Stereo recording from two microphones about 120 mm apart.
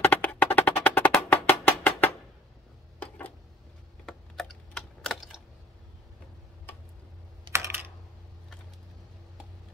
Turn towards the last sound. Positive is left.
turn(degrees=-20)  # may be behind; listen again after turning